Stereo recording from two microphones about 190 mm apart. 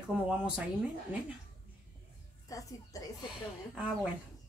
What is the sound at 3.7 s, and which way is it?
Speech, 5° right (ahead or behind).